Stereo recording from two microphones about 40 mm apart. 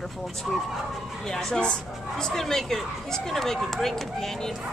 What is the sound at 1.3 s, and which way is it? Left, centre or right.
Speech, centre.